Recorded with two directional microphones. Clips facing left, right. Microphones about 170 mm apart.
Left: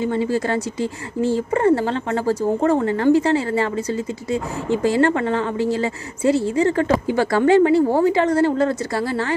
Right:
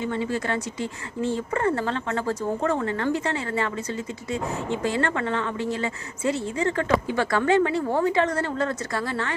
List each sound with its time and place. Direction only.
0.0 s speech: 35° left (ahead or behind)